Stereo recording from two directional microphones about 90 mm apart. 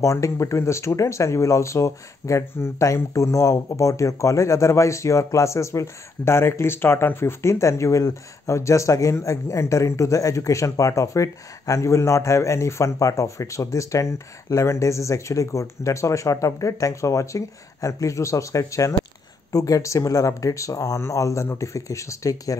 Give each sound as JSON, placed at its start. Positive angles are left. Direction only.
{"t": 0.0, "sound": "speech", "side_deg": 35}